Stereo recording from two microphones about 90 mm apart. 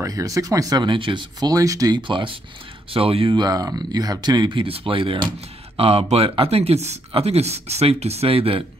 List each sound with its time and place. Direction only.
0.0 s speech: 35° right (ahead or behind)
0.8 s speech: 65° right (ahead or behind)
1.4 s speech: 40° right (ahead or behind)
2.0 s speech: 65° right (ahead or behind)
2.9 s speech: 90° right; by 3.4 s 75° right (ahead or behind)
3.4 s speech: 45° right (ahead or behind); by 5.2 s 80° right
5.8 s speech: 90° right